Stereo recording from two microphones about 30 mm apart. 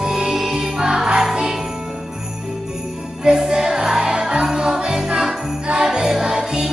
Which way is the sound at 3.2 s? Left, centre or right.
Right.